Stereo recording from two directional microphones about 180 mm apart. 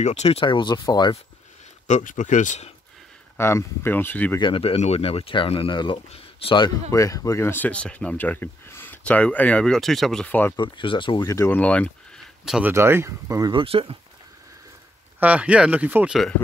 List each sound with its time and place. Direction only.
0.0 s speech: 35° left (ahead or behind)
1.9 s speech: 40° left (ahead or behind)
3.3 s speech: 15° left (ahead or behind)
4.4 s speech: 30° left (ahead or behind)
6.9 s speech: 20° left (ahead or behind)
10.5 s speech: 25° left (ahead or behind); by 11.9 s 5° left (ahead or behind)
12.4 s speech: 5° right (ahead or behind); by 13.9 s 30° right (ahead or behind)
15.1 s speech: 10° right (ahead or behind)